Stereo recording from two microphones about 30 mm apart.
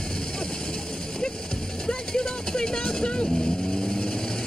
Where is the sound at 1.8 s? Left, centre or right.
Left.